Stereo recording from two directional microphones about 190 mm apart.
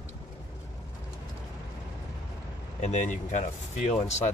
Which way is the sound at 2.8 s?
40° left (ahead or behind).